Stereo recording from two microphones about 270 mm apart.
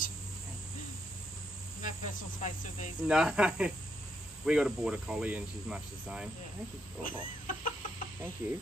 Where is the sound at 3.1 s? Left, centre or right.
Centre.